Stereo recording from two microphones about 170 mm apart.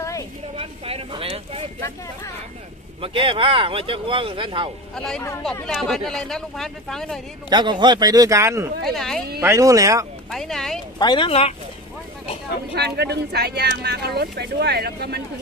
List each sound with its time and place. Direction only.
0.6 s speech: 35° right (ahead or behind)
3.0 s speech: 30° right (ahead or behind)
4.9 s speech: 5° left (ahead or behind)
7.4 s a man's voice: 25° right (ahead or behind)
8.8 s speech: centre (ahead or behind)
9.4 s a man's voice: 15° right (ahead or behind)
10.3 s speech: centre (ahead or behind)
11.0 s speech: 25° left (ahead or behind)
12.7 s speech: 75° right (ahead or behind)